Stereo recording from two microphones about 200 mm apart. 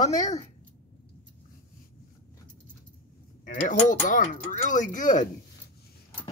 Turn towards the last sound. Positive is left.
turn(degrees=40)  # may be behind; listen again after turning